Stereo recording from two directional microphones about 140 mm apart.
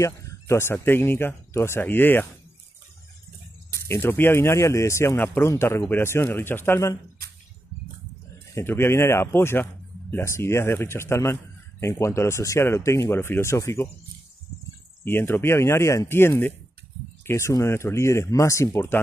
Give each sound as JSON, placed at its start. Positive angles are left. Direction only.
{"t": 0.0, "sound": "speech", "side_deg": 20}
{"t": 3.8, "sound": "speech", "side_deg": 15}
{"t": 8.5, "sound": "speech", "side_deg": 15}
{"t": 15.0, "sound": "speech", "side_deg": 15}